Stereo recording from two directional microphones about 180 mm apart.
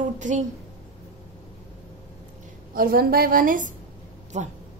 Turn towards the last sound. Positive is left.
turn(degrees=-40)  # may be behind; listen again after turning